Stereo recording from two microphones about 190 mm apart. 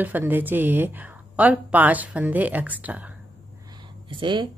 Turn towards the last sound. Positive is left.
turn(degrees=-25)  # may be behind; listen again after turning